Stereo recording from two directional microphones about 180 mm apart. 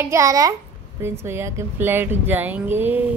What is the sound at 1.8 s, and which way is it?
Speech, 10° right (ahead or behind).